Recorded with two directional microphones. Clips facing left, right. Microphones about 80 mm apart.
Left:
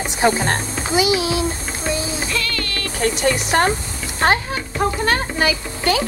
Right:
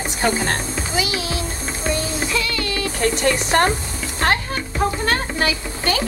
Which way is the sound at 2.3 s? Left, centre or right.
Centre.